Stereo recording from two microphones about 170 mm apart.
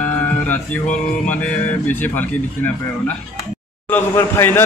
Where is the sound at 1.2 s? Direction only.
10° left (ahead or behind).